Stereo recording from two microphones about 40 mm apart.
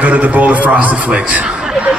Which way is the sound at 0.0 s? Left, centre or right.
Right.